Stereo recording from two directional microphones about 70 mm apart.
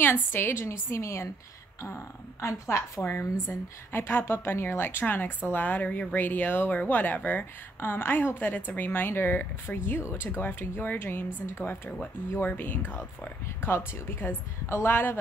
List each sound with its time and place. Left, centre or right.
0.0 s speech: left
3.0 s a woman's voice: left